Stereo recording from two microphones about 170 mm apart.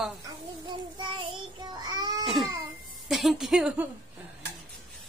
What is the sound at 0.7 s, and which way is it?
Child singing, 30° right (ahead or behind).